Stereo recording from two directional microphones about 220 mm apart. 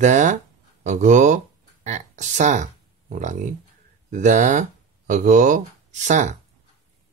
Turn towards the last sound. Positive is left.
turn(degrees=-35)  # may be behind; listen again after turning